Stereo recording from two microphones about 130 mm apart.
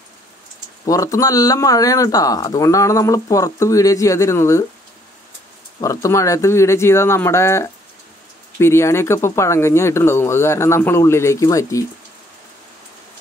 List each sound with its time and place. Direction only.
0.8 s speech: 25° left (ahead or behind)
5.8 s speech: 25° left (ahead or behind)